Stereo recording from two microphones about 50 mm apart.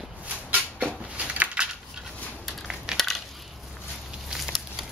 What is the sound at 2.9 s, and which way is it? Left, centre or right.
Crushing, centre.